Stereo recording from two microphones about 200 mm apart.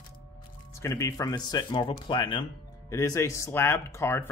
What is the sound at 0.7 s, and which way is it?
Speech, 15° left (ahead or behind).